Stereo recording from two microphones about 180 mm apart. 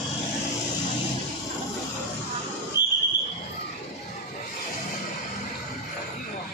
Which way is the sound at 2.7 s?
80° left.